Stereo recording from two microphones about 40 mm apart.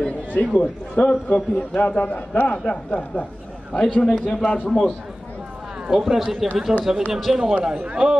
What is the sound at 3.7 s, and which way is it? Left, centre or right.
Speech, left.